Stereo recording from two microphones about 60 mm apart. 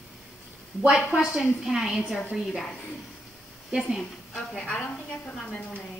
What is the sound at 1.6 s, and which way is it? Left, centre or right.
Speech, centre.